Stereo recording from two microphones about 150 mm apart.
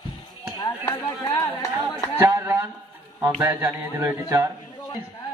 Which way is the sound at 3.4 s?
15° right (ahead or behind).